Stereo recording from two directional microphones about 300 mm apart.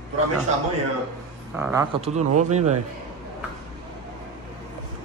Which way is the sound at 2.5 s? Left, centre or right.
Right.